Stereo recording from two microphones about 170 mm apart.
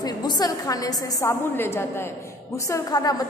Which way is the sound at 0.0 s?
25° left (ahead or behind).